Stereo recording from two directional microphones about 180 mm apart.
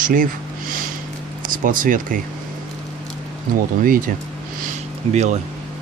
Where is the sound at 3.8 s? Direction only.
50° right (ahead or behind).